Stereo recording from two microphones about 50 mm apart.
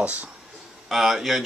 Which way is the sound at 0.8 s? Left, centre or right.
Centre.